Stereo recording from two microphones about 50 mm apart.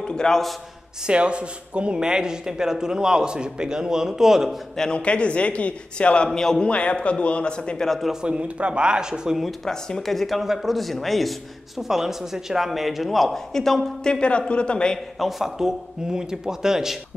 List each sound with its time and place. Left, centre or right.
0.0 s a man's voice: centre
1.0 s speech: right
4.7 s a man's voice: centre
6.7 s a man's voice: left
7.8 s speech: centre
8.1 s speech: centre
9.7 s a man's voice: centre
15.1 s speech: centre